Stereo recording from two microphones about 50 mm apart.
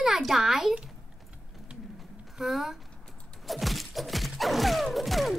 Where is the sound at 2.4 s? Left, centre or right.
Centre.